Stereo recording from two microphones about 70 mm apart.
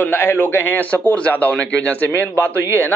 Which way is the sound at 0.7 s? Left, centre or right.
Centre.